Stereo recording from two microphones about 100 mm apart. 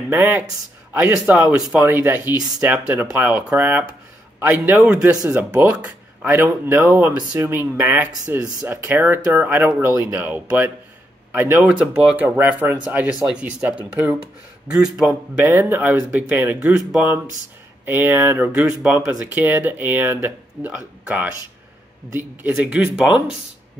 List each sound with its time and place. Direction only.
0.1 s speech: 15° right (ahead or behind)
1.8 s speech: 20° right (ahead or behind)
15.4 s speech: 20° right (ahead or behind)
22.6 s speech: 10° right (ahead or behind)